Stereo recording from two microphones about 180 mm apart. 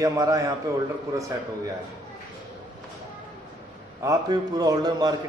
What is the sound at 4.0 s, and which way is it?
A man's voice, 20° right (ahead or behind).